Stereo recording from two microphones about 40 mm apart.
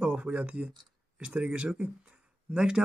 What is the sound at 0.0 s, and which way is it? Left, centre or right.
Speech, right.